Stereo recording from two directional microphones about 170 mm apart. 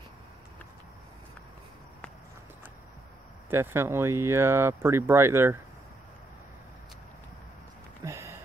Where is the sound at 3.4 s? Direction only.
15° right (ahead or behind).